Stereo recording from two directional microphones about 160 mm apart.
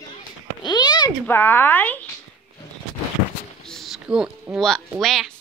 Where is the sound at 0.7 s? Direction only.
25° left (ahead or behind).